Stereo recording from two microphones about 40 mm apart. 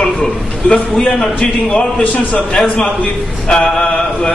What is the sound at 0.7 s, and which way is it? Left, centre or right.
Speech, centre.